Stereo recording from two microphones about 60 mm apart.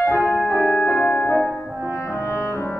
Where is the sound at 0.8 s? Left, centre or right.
Left.